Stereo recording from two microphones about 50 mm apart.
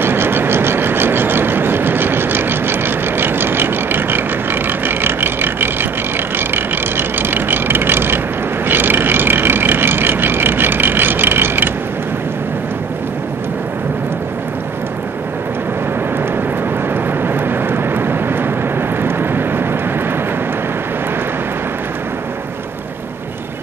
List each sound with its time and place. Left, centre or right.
0.0 s vehicle: right
16.9 s vehicle: right